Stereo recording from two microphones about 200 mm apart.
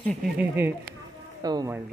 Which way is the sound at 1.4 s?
20° right (ahead or behind).